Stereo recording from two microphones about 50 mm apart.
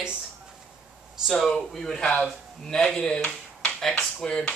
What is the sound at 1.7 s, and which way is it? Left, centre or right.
Speech, centre.